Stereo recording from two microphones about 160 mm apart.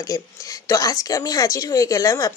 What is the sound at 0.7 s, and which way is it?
A woman's voice, 20° left (ahead or behind).